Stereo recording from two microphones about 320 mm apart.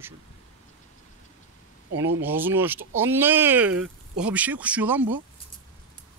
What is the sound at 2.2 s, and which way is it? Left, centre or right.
Speech, centre.